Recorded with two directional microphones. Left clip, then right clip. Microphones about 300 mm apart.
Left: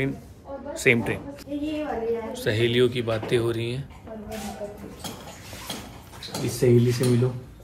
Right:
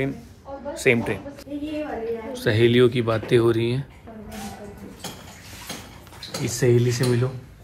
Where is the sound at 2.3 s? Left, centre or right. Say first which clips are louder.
Right 6 dB; centre.